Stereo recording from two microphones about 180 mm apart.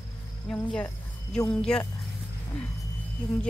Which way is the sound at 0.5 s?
5° left (ahead or behind).